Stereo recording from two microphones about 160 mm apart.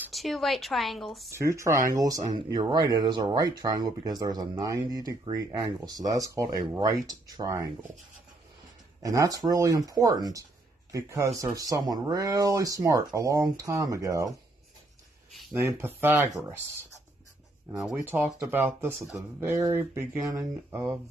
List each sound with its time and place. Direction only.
0.1 s speech: centre (ahead or behind)
1.3 s speech: 20° right (ahead or behind)
9.0 s speech: 20° right (ahead or behind)
15.6 s speech: 15° right (ahead or behind)
17.9 s speech: 15° right (ahead or behind)